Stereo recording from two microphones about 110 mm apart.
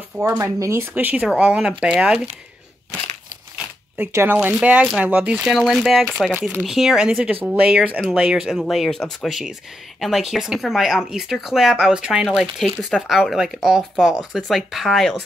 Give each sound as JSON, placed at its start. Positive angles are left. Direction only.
{"t": 0.2, "sound": "speech", "side_deg": -20}
{"t": 4.1, "sound": "speech", "side_deg": -20}